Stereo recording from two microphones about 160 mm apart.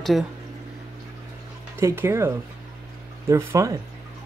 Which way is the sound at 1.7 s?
15° right (ahead or behind).